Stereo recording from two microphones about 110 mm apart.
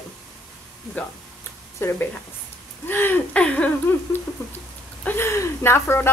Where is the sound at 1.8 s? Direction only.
20° left (ahead or behind).